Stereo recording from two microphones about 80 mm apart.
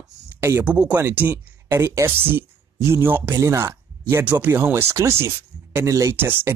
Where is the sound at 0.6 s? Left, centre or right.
Right.